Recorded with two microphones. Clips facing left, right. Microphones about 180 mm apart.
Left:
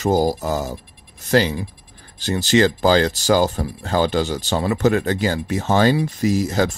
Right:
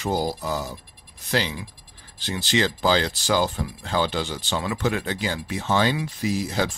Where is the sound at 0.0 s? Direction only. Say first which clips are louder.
Left 7 dB; 45° left (ahead or behind).